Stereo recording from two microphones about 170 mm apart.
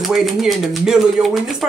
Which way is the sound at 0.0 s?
Centre (ahead or behind).